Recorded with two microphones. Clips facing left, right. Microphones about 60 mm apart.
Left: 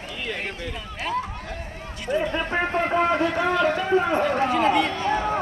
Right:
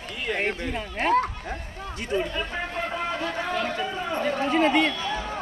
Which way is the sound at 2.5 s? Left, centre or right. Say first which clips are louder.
Left 7 dB; left.